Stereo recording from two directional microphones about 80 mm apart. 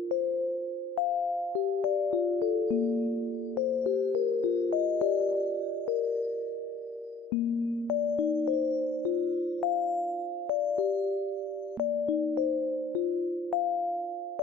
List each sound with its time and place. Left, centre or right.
4.7 s music: centre
9.6 s music: centre